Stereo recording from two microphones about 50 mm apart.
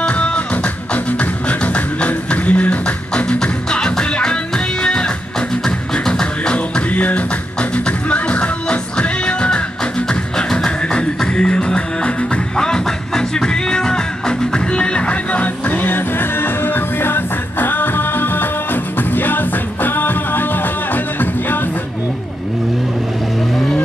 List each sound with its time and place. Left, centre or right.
0.1 s music: left
1.5 s beatboxing: left
3.3 s music: centre
6.5 s music: left